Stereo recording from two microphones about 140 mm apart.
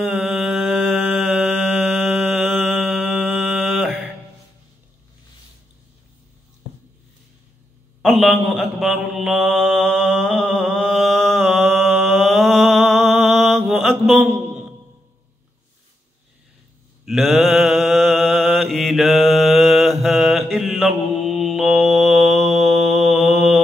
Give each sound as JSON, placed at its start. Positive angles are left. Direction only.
{"t": 0.0, "sound": "mantra", "side_deg": -5}
{"t": 1.7, "sound": "a sound", "side_deg": 0}
{"t": 8.0, "sound": "mantra", "side_deg": 0}
{"t": 17.0, "sound": "mantra", "side_deg": 0}